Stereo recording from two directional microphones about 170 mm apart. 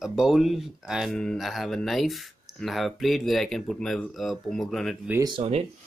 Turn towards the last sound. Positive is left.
turn(degrees=-35)  # may be behind; listen again after turning